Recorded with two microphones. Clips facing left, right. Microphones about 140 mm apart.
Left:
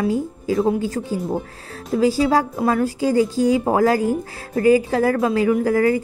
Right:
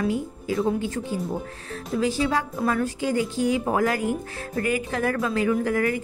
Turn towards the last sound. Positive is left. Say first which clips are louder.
# left 6 dB
turn(degrees=30)  # may be behind; listen again after turning